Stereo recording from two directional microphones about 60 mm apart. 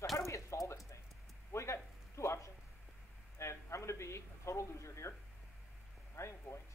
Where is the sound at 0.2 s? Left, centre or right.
Left.